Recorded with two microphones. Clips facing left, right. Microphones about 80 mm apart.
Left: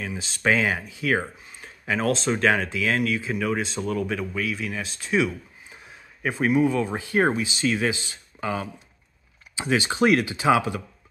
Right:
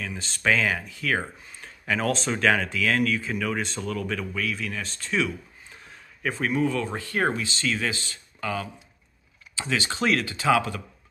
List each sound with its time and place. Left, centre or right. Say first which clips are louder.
0.0 s speech: left 2 dB; centre